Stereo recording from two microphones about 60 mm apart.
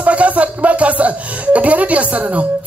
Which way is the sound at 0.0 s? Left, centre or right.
Right.